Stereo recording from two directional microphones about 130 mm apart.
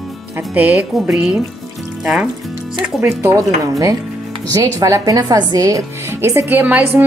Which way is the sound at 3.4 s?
25° right (ahead or behind).